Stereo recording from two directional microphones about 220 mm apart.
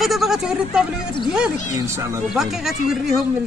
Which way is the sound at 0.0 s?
Centre (ahead or behind).